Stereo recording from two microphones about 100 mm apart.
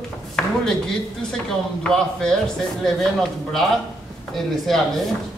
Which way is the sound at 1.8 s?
5° left (ahead or behind).